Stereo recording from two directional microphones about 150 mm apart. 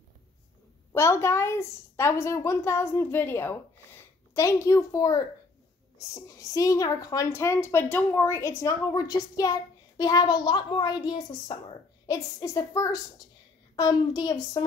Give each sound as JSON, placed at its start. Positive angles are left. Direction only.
{"t": 0.9, "sound": "a woman's voice", "side_deg": 20}